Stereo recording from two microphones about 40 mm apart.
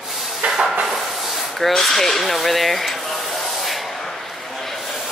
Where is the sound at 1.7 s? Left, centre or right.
Centre.